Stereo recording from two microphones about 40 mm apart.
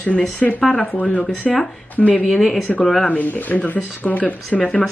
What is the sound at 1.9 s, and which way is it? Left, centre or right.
Speech, left.